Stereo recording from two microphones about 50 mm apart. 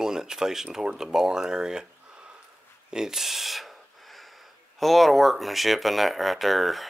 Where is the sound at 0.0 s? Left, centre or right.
Centre.